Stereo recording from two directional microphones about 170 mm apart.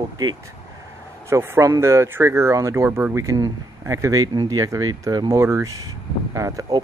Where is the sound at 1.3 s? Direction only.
15° right (ahead or behind).